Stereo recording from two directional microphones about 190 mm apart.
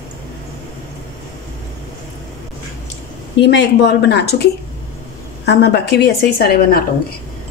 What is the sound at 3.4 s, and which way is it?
A woman's voice, 65° left (ahead or behind).